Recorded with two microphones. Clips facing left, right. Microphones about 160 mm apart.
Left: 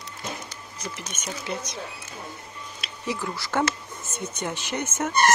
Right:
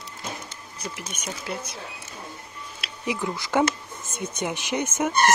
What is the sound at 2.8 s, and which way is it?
Speech, 15° right (ahead or behind).